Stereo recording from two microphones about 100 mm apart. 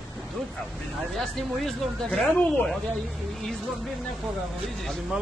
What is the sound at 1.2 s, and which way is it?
Speech, 5° left (ahead or behind).